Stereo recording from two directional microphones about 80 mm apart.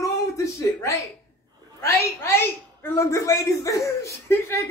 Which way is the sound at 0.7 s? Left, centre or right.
Left.